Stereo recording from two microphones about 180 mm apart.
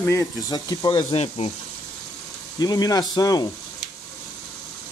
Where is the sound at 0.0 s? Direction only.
20° left (ahead or behind); by 1.5 s 35° left (ahead or behind).